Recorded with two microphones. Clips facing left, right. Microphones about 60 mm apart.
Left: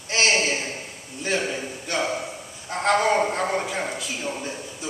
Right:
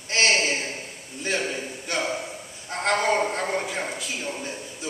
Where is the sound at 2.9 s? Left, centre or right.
Centre.